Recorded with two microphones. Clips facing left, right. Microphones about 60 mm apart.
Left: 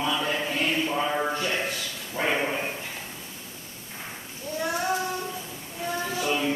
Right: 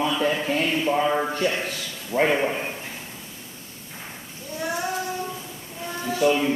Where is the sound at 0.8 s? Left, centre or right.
Centre.